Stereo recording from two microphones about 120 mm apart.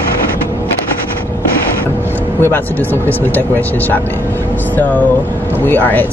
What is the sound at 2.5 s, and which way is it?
Speech, 15° left (ahead or behind).